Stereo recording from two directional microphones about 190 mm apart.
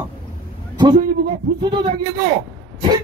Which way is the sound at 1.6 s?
25° right (ahead or behind).